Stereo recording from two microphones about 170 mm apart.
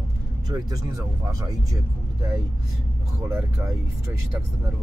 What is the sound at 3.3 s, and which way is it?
Speech, 15° right (ahead or behind).